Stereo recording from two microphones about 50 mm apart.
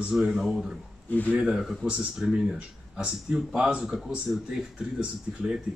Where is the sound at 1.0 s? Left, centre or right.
Left.